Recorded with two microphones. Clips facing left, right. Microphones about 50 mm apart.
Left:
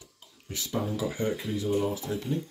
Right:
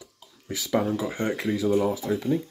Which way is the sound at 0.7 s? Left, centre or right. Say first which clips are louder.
Right 7 dB; right.